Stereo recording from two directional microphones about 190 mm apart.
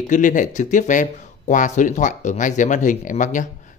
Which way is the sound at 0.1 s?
45° left (ahead or behind).